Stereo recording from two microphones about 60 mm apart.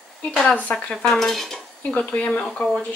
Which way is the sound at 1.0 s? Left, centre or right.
Centre.